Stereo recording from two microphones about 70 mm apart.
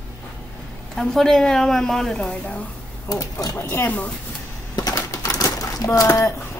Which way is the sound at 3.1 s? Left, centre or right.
Left.